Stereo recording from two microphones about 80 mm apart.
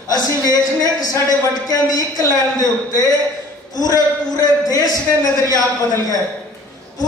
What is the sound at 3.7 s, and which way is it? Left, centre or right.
A woman's voice, left.